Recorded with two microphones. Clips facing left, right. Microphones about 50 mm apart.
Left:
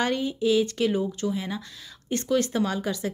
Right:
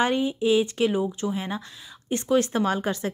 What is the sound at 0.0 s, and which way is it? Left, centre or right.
Speech, right.